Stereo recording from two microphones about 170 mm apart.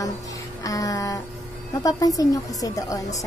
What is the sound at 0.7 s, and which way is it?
A child's voice, 20° left (ahead or behind).